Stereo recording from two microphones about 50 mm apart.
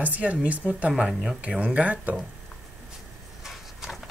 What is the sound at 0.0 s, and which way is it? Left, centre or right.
Speech, right.